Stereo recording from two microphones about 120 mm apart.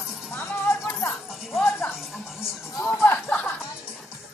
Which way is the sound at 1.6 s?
20° left (ahead or behind).